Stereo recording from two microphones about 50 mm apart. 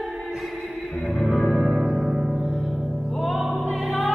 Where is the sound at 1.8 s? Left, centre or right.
Centre.